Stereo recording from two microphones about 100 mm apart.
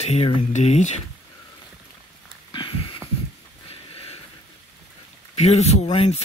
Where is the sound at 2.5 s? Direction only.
55° left (ahead or behind).